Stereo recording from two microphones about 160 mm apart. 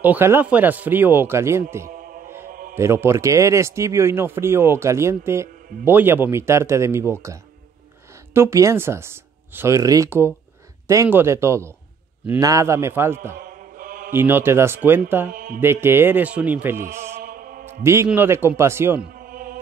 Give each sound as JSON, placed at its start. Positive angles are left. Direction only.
{"t": 0.0, "sound": "speech", "side_deg": -15}
{"t": 1.9, "sound": "music", "side_deg": -60}
{"t": 2.7, "sound": "speech", "side_deg": -15}
{"t": 13.4, "sound": "mantra", "side_deg": -60}
{"t": 14.1, "sound": "speech", "side_deg": -15}
{"t": 15.3, "sound": "mantra", "side_deg": -65}
{"t": 15.6, "sound": "speech", "side_deg": -15}
{"t": 17.2, "sound": "mantra", "side_deg": -60}
{"t": 17.8, "sound": "speech", "side_deg": -15}
{"t": 19.1, "sound": "music", "side_deg": -60}